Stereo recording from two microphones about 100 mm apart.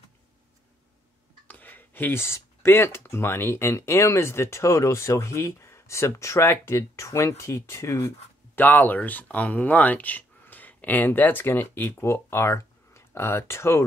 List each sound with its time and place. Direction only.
1.5 s speech: 20° left (ahead or behind)
8.5 s speech: 20° left (ahead or behind)